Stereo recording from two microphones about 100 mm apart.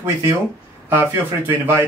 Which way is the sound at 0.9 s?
20° right (ahead or behind).